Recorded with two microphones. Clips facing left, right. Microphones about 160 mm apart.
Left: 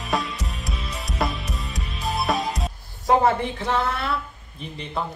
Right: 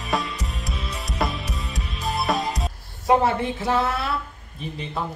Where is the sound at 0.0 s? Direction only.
Centre (ahead or behind).